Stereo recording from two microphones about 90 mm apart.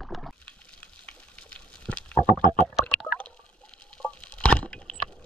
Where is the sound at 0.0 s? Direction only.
Centre (ahead or behind).